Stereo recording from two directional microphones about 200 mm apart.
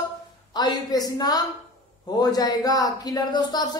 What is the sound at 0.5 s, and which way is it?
A woman's voice, 20° left (ahead or behind).